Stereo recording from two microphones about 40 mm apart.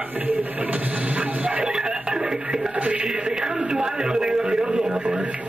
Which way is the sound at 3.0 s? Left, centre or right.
Right.